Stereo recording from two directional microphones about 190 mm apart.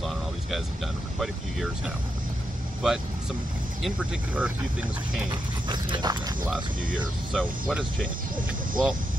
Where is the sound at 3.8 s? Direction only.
5° right (ahead or behind).